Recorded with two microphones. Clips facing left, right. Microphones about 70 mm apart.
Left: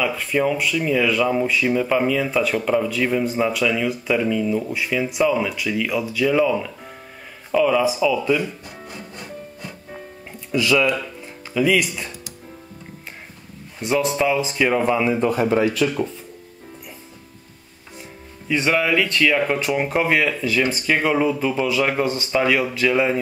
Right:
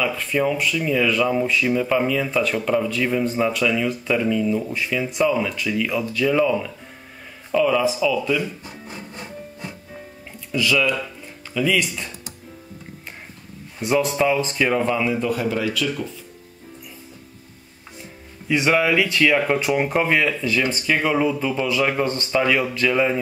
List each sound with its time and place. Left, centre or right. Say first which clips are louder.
0.0 s speech: left 1 dB; centre
10.5 s speech: left 2 dB; centre
11.5 s speech: left 2 dB; centre
13.7 s speech: even; centre
15.1 s speech: left 4 dB; left
18.5 s speech: right 1 dB; centre